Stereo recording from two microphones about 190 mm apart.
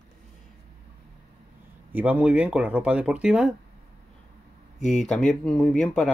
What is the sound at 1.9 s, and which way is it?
Speech, 10° right (ahead or behind).